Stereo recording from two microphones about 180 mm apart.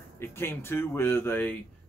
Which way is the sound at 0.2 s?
15° left (ahead or behind).